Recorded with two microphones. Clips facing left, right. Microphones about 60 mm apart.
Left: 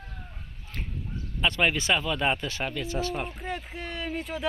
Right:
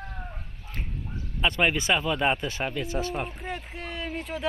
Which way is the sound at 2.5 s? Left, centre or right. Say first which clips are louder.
Right 1 dB; right.